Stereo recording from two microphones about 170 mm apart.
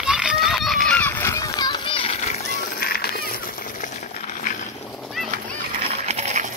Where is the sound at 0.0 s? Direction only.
5° right (ahead or behind); by 2.4 s 40° left (ahead or behind).